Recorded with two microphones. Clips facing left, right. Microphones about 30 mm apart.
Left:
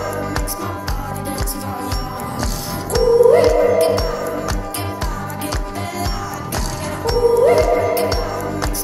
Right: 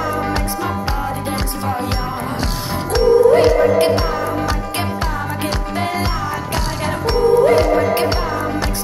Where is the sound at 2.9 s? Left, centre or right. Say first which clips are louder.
Even; right.